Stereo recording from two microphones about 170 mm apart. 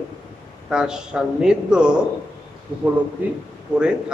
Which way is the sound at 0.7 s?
5° right (ahead or behind).